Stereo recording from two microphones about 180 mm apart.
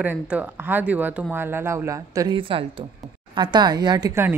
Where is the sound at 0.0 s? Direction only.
10° right (ahead or behind).